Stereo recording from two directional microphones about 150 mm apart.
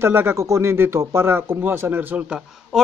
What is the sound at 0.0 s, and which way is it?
Speech, 15° right (ahead or behind).